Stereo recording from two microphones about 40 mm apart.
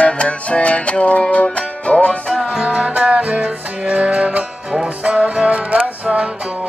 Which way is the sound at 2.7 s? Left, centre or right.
Right.